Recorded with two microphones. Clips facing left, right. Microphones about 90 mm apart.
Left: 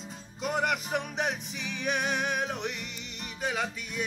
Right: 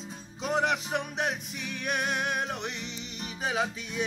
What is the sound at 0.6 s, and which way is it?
Music, 5° left (ahead or behind).